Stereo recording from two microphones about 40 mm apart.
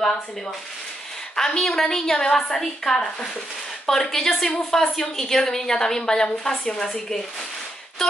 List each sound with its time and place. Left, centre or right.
1.3 s a woman's voice: centre